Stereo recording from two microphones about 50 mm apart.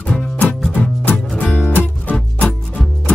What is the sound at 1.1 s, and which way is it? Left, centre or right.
Music, left.